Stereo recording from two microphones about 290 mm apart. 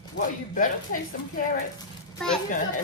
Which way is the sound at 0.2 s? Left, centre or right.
Left.